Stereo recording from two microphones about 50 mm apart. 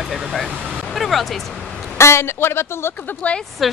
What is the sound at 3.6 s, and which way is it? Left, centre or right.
Speech, centre.